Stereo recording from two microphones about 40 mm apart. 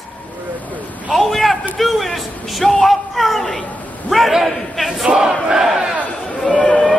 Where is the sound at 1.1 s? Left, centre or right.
Centre.